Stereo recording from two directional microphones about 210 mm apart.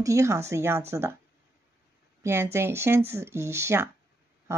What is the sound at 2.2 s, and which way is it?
Speech, 10° right (ahead or behind).